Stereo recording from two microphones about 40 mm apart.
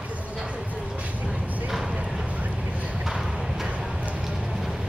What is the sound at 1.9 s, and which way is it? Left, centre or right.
Clip-clop, centre.